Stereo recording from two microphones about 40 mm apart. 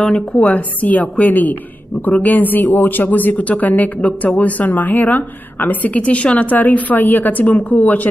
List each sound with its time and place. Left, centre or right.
0.0 s speech: left
5.9 s speech: left
6.5 s speech: left